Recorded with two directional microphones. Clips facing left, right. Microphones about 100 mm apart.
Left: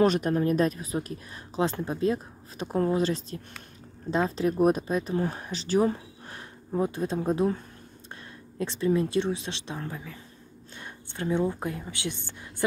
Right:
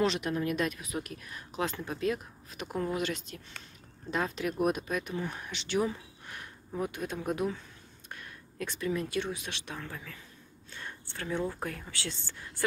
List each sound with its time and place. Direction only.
0.0 s speech: 45° left (ahead or behind); by 12.6 s 20° left (ahead or behind)